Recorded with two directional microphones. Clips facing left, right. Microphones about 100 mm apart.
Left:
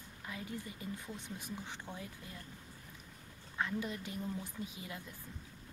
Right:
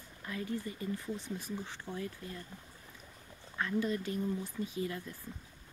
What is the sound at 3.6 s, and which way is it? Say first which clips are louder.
Speech: right 5 dB; 15° left (ahead or behind).